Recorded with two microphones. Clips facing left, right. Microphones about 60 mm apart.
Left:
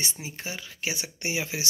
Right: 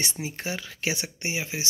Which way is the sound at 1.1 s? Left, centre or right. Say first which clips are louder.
Even; right.